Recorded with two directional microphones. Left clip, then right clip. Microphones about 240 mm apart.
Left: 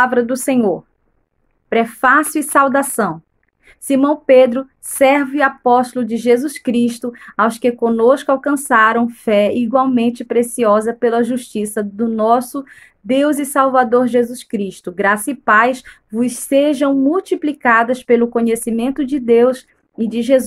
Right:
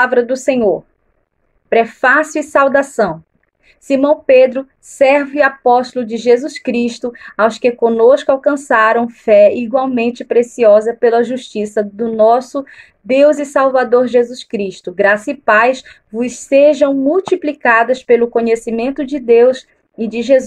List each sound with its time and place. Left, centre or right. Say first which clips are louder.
0.0 s a woman's voice: right 2 dB; left
7.1 s a woman's voice: right 5 dB; left
20.1 s a woman's voice: right 3 dB; left